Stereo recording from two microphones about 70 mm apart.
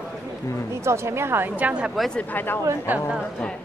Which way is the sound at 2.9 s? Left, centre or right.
Right.